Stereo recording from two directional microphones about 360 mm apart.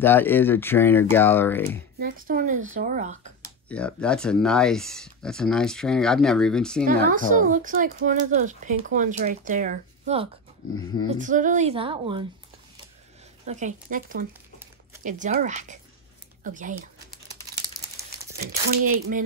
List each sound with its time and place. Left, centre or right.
0.0 s speech: centre
2.0 s speech: right
3.6 s speech: centre
6.8 s a woman's voice: right
13.5 s speech: centre
18.7 s speech: right